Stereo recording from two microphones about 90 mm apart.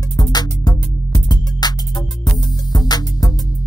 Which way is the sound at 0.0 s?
50° left (ahead or behind).